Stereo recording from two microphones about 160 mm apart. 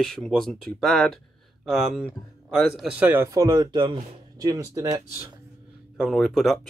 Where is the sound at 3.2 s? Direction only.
20° right (ahead or behind).